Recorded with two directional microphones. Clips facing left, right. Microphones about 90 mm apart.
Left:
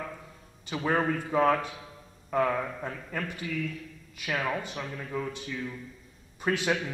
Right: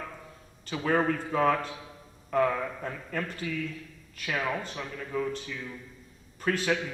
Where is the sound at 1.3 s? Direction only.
10° left (ahead or behind).